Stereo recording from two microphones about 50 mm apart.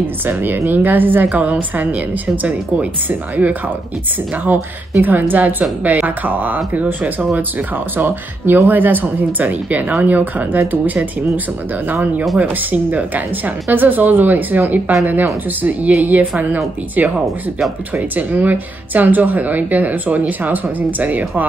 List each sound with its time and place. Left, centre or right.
0.2 s a woman's voice: right
5.0 s a woman's voice: right
11.9 s a woman's voice: right